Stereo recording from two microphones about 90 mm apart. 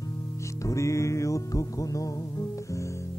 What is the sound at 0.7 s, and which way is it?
Music, 35° left (ahead or behind).